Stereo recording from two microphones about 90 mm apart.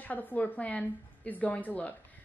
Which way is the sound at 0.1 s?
20° left (ahead or behind).